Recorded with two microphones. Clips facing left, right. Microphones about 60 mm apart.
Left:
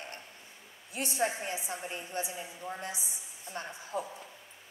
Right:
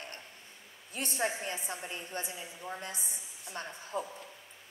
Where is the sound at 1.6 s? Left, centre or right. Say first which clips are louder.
Left 1 dB; right.